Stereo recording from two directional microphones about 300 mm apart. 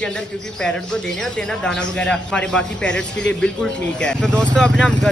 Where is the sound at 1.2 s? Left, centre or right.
Centre.